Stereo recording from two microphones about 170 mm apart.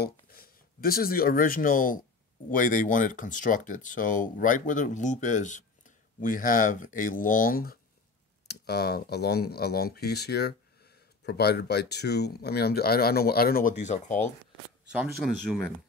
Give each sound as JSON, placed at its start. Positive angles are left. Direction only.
{"t": 0.0, "sound": "speech", "side_deg": 60}
{"t": 8.5, "sound": "speech", "side_deg": 70}
{"t": 13.7, "sound": "speech", "side_deg": 45}
{"t": 14.9, "sound": "speech", "side_deg": -5}